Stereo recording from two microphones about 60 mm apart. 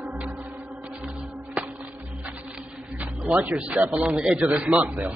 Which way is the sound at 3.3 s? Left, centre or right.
Right.